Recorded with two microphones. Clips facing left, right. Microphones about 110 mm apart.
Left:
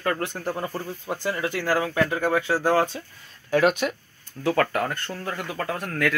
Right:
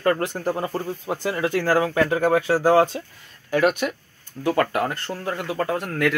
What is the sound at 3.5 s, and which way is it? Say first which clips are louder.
Speech: even; centre (ahead or behind).